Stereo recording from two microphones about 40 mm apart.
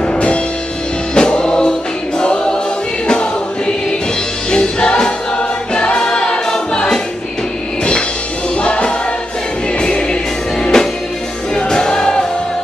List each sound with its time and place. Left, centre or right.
0.0 s music: left
5.8 s choir: left
8.5 s music: left
10.7 s music: centre
11.5 s choir: centre